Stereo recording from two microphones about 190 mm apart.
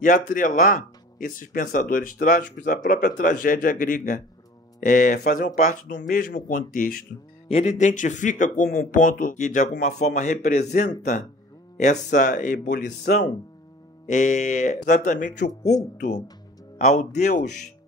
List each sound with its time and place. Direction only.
0.0 s speech: 45° left (ahead or behind)
7.4 s speech: 35° left (ahead or behind)